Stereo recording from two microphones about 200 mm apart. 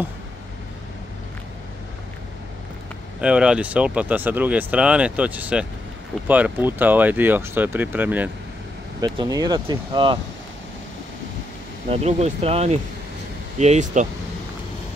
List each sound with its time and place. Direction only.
3.2 s speech: 5° right (ahead or behind)
9.0 s speech: 20° right (ahead or behind)
11.9 s speech: 35° right (ahead or behind)